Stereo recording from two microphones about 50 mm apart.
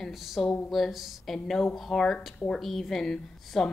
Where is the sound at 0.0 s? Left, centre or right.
Centre.